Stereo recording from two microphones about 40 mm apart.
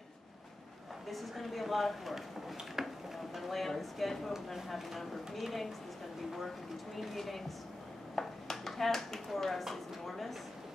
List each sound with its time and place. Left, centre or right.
1.1 s speech: centre
2.5 s a sound: centre
3.3 s speech: centre
7.0 s speech: centre